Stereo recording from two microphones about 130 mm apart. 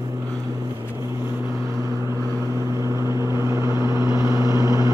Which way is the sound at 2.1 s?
20° right (ahead or behind).